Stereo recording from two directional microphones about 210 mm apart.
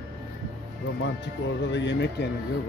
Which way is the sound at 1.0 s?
60° left (ahead or behind).